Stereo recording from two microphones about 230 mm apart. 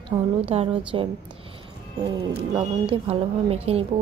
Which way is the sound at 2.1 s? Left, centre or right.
Centre.